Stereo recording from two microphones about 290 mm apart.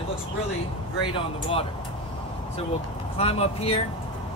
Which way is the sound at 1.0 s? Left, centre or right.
Centre.